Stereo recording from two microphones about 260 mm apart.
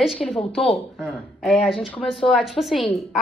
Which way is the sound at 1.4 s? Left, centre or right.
Centre.